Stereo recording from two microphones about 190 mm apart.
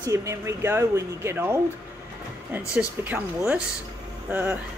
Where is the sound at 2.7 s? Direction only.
10° right (ahead or behind).